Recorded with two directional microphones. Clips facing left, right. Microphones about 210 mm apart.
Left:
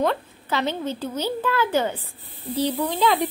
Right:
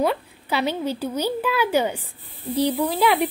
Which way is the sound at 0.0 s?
10° right (ahead or behind).